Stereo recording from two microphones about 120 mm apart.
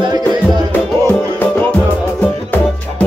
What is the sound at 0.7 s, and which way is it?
Music, 15° left (ahead or behind).